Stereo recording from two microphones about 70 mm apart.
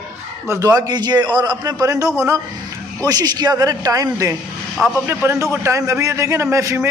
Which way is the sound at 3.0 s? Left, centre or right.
Right.